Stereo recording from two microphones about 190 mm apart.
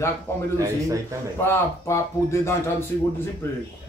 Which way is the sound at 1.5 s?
15° left (ahead or behind).